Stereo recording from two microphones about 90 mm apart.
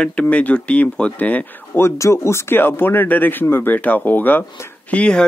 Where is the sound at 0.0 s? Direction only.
15° left (ahead or behind).